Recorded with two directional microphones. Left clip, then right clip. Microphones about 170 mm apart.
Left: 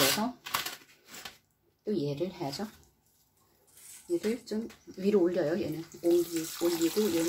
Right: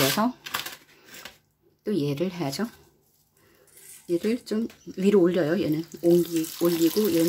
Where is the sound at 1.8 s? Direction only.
45° right (ahead or behind).